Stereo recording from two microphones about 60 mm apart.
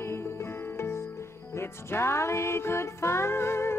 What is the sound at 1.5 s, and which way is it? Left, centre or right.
Music, left.